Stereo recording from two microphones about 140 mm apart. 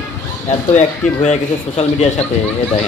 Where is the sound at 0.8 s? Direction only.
55° left (ahead or behind).